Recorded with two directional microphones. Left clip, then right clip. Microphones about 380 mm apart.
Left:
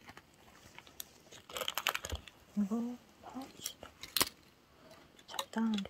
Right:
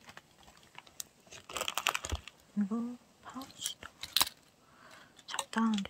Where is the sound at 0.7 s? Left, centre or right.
Right.